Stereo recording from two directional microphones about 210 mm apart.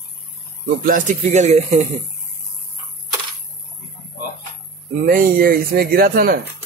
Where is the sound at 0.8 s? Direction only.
40° right (ahead or behind).